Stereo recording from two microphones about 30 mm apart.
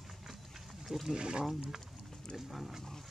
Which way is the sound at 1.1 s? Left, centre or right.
Right.